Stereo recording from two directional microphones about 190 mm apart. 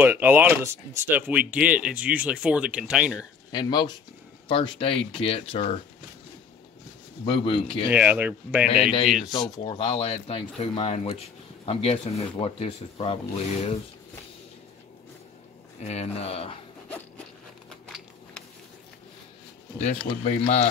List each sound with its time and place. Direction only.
0.0 s speech: 10° right (ahead or behind)
3.5 s speech: 20° left (ahead or behind)
7.2 s speech: 25° left (ahead or behind)
7.9 s speech: 10° right (ahead or behind)
9.3 s speech: 25° left (ahead or behind)
15.8 s speech: 35° left (ahead or behind)
17.6 s a sound: 5° left (ahead or behind)
19.8 s speech: 35° left (ahead or behind)